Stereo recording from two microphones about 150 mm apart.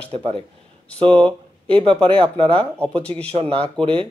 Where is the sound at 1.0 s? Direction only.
5° left (ahead or behind).